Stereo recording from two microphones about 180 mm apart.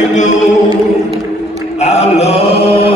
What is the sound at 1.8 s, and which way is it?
Chant, 35° left (ahead or behind).